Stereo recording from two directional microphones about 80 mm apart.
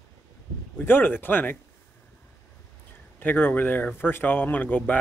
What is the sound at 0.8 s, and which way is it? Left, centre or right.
Speech, left.